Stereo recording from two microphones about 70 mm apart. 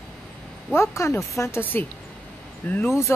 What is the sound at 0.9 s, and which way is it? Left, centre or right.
Speech, left.